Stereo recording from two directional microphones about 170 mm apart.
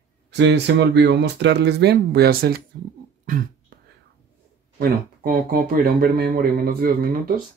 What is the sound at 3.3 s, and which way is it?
Beatboxing, 50° right (ahead or behind).